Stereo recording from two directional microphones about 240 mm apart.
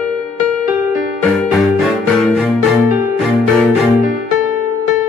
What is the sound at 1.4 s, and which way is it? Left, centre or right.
Music, centre.